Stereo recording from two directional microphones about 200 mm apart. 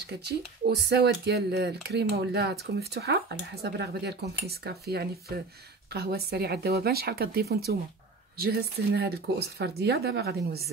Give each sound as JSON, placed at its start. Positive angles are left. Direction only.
{"t": 0.0, "sound": "speech", "side_deg": -55}